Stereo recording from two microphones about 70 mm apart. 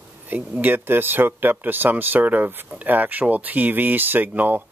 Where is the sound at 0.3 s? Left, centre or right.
Right.